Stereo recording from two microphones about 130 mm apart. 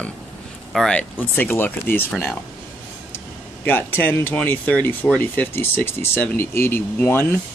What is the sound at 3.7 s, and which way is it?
Speech, 15° left (ahead or behind).